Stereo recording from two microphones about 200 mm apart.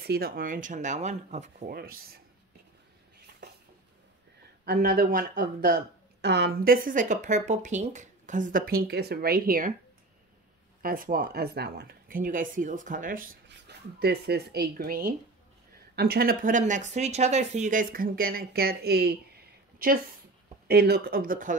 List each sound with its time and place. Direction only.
0.0 s speech: 50° right (ahead or behind); by 1.7 s 35° right (ahead or behind)
1.7 s speech: 50° right (ahead or behind)
3.4 s a sound: 60° right (ahead or behind)
4.6 s speech: 50° right (ahead or behind)
6.2 s speech: 60° right (ahead or behind)
10.8 s speech: 45° right (ahead or behind)